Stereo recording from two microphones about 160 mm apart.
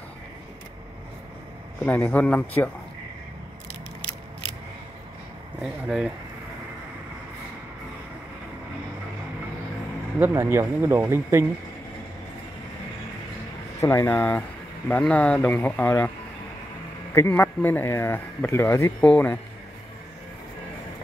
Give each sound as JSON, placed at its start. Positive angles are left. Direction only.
{"t": 1.9, "sound": "speech", "side_deg": 10}
{"t": 5.6, "sound": "speech", "side_deg": -5}
{"t": 10.1, "sound": "speech", "side_deg": -15}
{"t": 13.7, "sound": "speech", "side_deg": 20}
{"t": 17.1, "sound": "speech", "side_deg": 15}